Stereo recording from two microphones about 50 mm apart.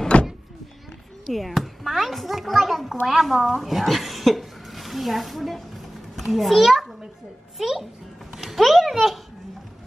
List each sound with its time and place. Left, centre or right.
0.1 s power windows: left
1.2 s a child's voice: centre